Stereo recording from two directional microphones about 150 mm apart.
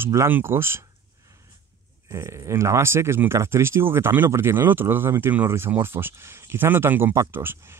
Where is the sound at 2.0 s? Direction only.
20° right (ahead or behind).